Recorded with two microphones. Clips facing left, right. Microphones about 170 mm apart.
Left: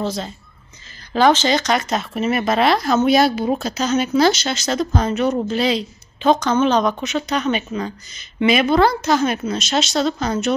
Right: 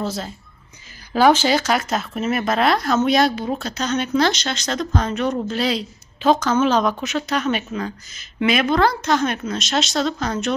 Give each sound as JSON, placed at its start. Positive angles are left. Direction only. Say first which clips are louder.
{"t": 0.0, "sound": "speech", "louder": "left 2 dB", "side_deg": -5}